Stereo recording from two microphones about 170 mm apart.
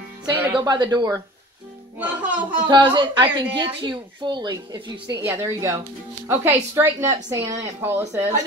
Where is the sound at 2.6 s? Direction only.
25° right (ahead or behind).